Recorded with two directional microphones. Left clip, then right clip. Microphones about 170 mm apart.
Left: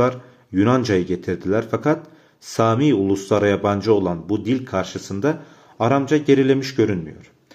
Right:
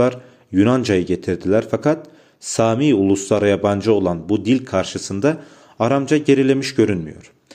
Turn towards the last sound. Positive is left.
turn(degrees=-35)  # may be behind; listen again after turning